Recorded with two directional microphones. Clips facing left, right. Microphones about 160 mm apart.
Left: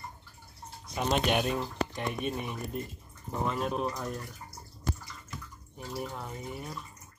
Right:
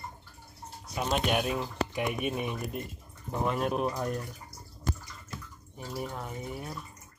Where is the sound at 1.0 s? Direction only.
Centre (ahead or behind).